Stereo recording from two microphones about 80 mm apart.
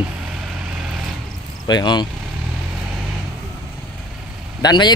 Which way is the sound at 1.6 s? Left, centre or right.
Left.